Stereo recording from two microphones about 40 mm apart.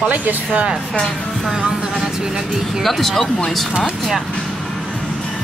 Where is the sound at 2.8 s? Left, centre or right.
Centre.